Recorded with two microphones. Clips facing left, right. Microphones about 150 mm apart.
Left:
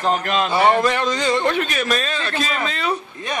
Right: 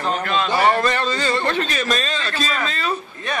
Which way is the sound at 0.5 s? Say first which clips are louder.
Left 2 dB; 20° left (ahead or behind).